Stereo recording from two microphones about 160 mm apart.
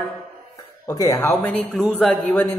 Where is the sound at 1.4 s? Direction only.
10° left (ahead or behind).